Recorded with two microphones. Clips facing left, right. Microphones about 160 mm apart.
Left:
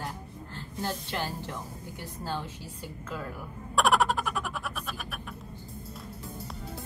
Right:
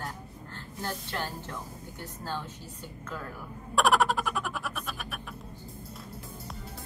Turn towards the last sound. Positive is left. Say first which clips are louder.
# even
turn(degrees=0)  # may be behind; listen again after turning